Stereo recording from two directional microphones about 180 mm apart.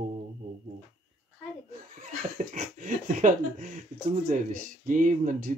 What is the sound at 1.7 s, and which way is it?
Speech, 45° right (ahead or behind).